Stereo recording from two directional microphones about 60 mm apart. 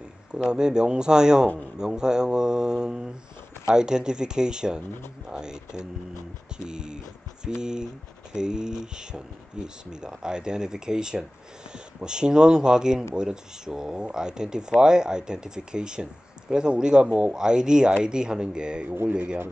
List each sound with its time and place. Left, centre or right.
0.5 s speech: centre
18.9 s speech: right